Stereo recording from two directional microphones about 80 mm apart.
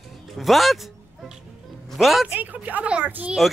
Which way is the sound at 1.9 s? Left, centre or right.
Centre.